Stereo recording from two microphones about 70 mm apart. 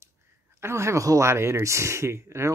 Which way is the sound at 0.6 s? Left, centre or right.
Right.